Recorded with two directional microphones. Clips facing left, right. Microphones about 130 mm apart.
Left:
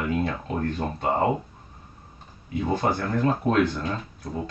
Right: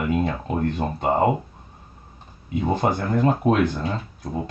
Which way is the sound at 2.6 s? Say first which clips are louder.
Right 2 dB; 15° right (ahead or behind).